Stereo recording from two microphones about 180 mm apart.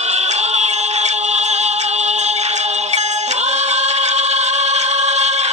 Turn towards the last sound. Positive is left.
turn(degrees=-40)  # may be behind; listen again after turning